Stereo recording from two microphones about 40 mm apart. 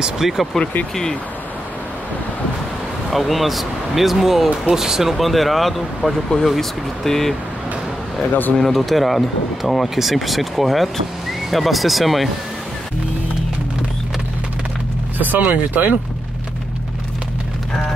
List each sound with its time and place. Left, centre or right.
0.0 s speech: centre
3.1 s speech: centre
5.1 s speech: centre
8.5 s speech: centre
15.1 s speech: right